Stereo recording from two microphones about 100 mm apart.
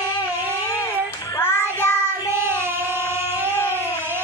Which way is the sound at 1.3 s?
25° left (ahead or behind).